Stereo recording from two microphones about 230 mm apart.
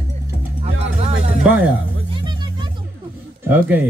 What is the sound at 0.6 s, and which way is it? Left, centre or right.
Music, right.